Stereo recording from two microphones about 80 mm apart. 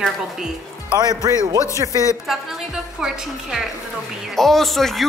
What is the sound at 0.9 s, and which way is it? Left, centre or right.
Speech, right.